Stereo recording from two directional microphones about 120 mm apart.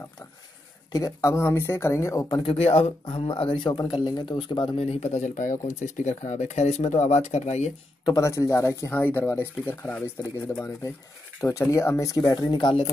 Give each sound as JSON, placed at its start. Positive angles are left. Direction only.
{"t": 0.9, "sound": "speech", "side_deg": 30}
{"t": 2.2, "sound": "speech", "side_deg": 40}
{"t": 2.5, "sound": "speech", "side_deg": 60}
{"t": 4.7, "sound": "speech", "side_deg": 65}
{"t": 8.0, "sound": "speech", "side_deg": 25}
{"t": 12.4, "sound": "speech", "side_deg": 40}